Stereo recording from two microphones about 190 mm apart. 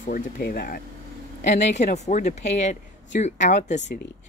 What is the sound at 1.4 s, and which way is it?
Speech, 40° left (ahead or behind).